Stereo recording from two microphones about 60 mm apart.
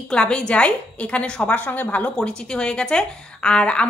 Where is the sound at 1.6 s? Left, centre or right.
Left.